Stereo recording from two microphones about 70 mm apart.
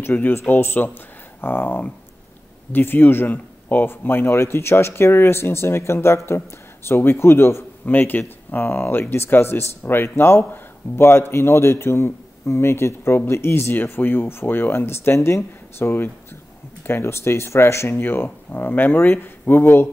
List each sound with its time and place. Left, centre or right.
0.0 s speech: left
7.8 s speech: left